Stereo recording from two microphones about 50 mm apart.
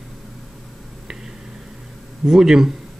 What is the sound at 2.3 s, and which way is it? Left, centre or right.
Speech, centre.